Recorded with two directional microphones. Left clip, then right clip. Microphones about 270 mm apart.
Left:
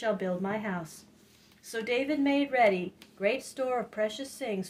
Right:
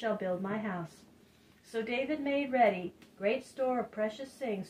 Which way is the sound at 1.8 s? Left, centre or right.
Left.